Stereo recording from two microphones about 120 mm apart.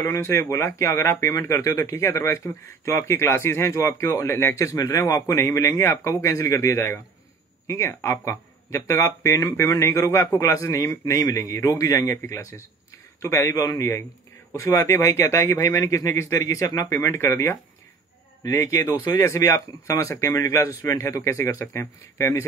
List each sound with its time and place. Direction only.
0.0 s speech: 20° left (ahead or behind)